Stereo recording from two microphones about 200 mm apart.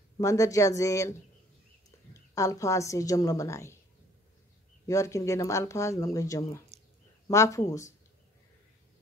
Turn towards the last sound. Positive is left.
turn(degrees=15)  # may be behind; listen again after turning